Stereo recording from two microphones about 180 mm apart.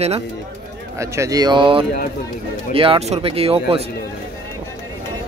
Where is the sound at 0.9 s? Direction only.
15° right (ahead or behind); by 3.8 s 35° right (ahead or behind).